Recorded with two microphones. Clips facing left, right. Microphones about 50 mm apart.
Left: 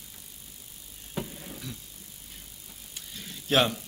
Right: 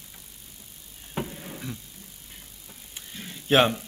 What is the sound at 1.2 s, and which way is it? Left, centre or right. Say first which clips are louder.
Vehicle: right 3 dB; right.